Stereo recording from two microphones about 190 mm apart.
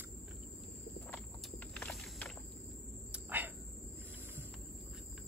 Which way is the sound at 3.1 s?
10° right (ahead or behind).